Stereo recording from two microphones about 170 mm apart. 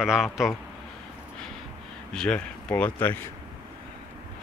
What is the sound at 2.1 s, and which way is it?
Speech, 5° left (ahead or behind).